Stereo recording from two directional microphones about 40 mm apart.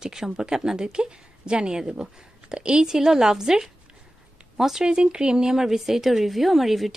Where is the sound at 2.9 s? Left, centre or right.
Centre.